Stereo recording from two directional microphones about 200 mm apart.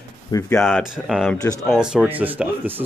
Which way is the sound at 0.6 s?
Centre (ahead or behind).